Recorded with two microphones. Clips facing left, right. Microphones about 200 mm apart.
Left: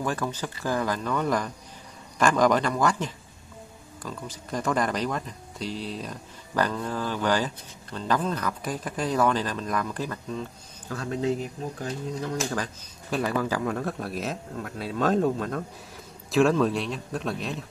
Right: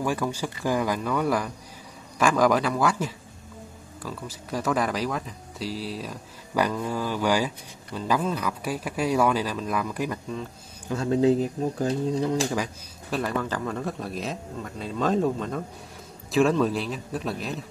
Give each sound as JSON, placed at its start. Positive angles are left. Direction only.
{"t": 0.0, "sound": "speech", "side_deg": -10}
{"t": 10.9, "sound": "speech", "side_deg": -30}
{"t": 13.1, "sound": "a man's voice", "side_deg": 5}